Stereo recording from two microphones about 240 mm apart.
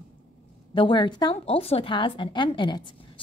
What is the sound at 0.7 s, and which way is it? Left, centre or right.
A woman's voice, centre.